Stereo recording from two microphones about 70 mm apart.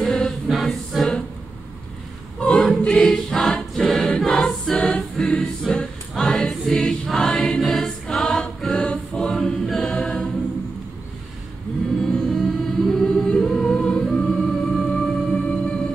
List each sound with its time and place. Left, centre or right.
0.0 s choir: centre
2.4 s choir: centre
12.0 s choir: centre